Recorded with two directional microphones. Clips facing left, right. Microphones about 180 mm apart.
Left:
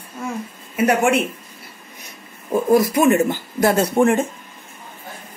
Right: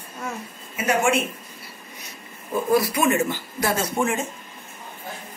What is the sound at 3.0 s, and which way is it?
A woman's voice, 50° left (ahead or behind).